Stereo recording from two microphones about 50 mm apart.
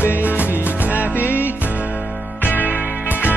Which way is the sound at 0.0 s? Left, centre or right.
Left.